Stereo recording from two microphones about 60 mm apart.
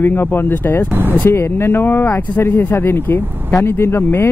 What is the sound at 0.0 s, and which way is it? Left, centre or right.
Speech, left.